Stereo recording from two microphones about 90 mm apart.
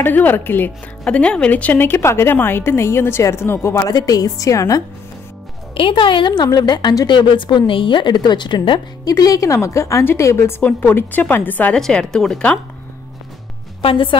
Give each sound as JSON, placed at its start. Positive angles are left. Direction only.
{"t": 0.0, "sound": "a woman's voice", "side_deg": 20}
{"t": 1.0, "sound": "a woman's voice", "side_deg": 10}
{"t": 3.9, "sound": "a woman's voice", "side_deg": 45}
{"t": 5.8, "sound": "a woman's voice", "side_deg": 75}
{"t": 9.0, "sound": "a woman's voice", "side_deg": 40}
{"t": 11.8, "sound": "speech", "side_deg": 5}
{"t": 13.8, "sound": "a woman's voice", "side_deg": 70}